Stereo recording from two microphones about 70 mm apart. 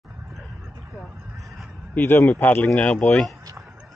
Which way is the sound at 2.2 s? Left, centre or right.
Left.